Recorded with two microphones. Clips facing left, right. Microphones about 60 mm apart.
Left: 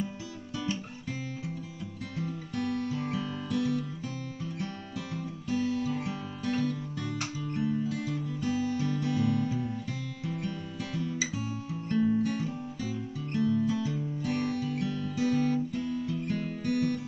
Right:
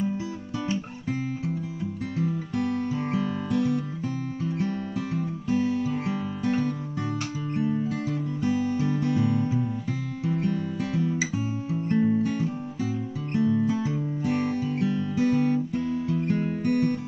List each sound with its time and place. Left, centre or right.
2.1 s music: centre
10.4 s music: right
10.9 s music: right
15.2 s guitar: right
16.1 s music: right